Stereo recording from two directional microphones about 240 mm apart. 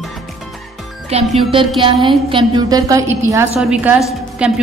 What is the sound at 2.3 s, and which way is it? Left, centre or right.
A woman's voice, centre.